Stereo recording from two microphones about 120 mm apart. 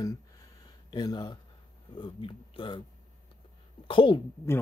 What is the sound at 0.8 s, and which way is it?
Speech, 35° left (ahead or behind).